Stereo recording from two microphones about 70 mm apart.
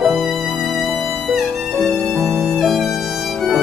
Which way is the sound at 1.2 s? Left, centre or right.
Centre.